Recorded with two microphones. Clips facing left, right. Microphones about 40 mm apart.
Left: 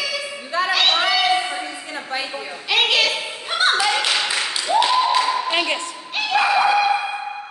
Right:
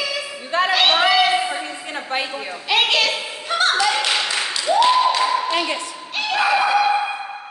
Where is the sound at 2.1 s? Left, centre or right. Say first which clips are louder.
Right 3 dB; right.